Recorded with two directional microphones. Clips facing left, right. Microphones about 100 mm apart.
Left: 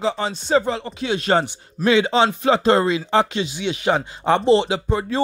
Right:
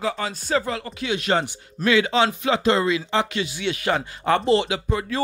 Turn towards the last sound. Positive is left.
turn(degrees=30)  # may be behind; listen again after turning